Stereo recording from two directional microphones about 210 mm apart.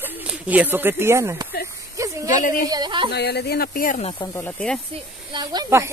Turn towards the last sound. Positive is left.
turn(degrees=-15)  # may be behind; listen again after turning